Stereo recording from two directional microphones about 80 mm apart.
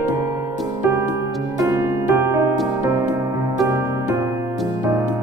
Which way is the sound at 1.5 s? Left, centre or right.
Right.